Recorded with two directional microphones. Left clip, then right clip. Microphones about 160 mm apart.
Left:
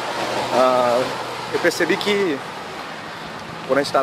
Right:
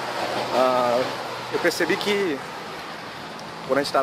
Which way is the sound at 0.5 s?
Centre (ahead or behind).